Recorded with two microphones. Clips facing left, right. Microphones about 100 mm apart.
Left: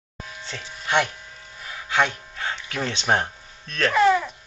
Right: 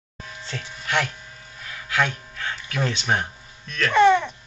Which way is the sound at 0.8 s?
20° left (ahead or behind).